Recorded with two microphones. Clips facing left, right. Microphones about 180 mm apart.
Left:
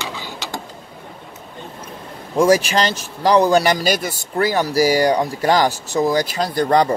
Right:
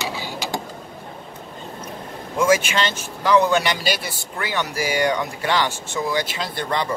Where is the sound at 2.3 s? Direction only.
35° left (ahead or behind).